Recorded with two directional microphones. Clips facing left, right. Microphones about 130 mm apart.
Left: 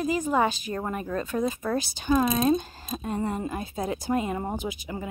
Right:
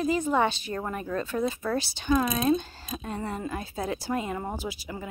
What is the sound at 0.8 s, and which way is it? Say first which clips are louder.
A woman's voice: left 1 dB; 20° left (ahead or behind).